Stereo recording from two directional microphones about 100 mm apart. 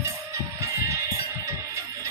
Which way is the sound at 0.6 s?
30° right (ahead or behind).